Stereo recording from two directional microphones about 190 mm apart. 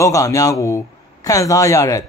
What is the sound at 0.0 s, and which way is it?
Speech, 15° left (ahead or behind).